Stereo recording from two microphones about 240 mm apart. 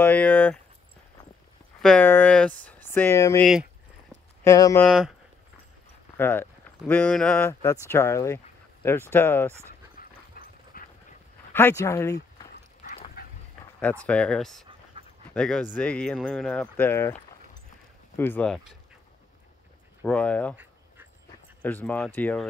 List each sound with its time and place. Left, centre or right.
0.0 s a sound: centre
1.8 s speech: centre
4.5 s speech: centre
6.1 s speech: centre
9.9 s dog: left
11.5 s speech: centre
12.8 s duck: left
14.0 s speech: centre
15.0 s dog: right
15.3 s speech: centre
20.1 s speech: centre
21.6 s speech: centre